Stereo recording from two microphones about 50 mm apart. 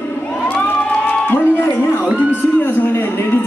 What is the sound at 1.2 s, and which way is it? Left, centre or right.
Music, left.